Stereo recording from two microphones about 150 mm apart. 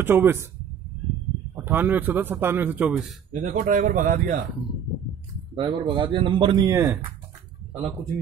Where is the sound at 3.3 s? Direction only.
60° right (ahead or behind).